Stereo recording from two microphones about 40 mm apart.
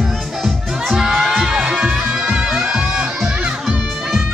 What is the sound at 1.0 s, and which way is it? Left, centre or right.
Crowd, centre.